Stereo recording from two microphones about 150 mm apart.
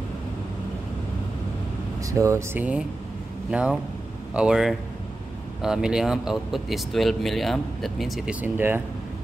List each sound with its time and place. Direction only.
2.0 s speech: 20° right (ahead or behind)